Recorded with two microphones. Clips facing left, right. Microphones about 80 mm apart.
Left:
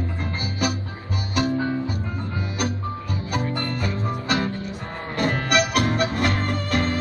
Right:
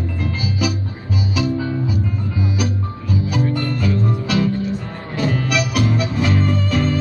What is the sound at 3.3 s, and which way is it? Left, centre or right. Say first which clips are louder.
Music: right 2 dB; left.